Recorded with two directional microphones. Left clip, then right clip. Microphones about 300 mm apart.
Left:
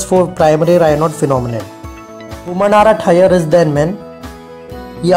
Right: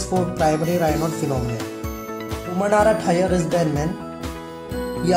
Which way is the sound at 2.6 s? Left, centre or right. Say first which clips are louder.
Left 9 dB; left.